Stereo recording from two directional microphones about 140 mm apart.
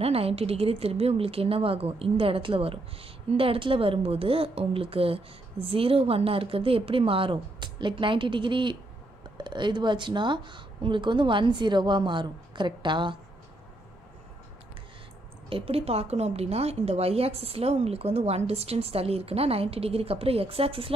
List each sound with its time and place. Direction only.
0.0 s a woman's voice: 45° right (ahead or behind)
15.5 s a woman's voice: 45° right (ahead or behind)